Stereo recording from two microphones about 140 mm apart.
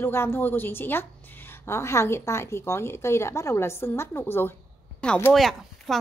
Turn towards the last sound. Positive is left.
turn(degrees=0)  # may be behind; listen again after turning